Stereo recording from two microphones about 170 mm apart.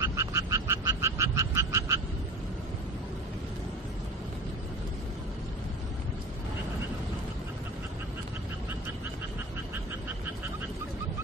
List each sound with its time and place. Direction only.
0.0 s frog: 15° right (ahead or behind)